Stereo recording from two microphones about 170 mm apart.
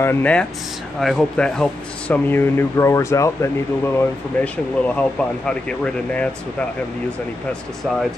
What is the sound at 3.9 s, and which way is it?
Speech, 5° left (ahead or behind).